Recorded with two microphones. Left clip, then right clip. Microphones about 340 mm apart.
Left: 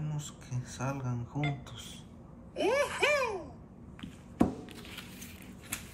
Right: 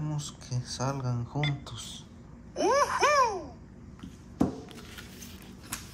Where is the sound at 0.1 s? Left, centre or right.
Centre.